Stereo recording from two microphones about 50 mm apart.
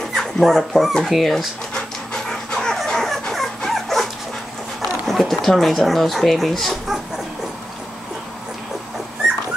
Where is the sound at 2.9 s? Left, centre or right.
Centre.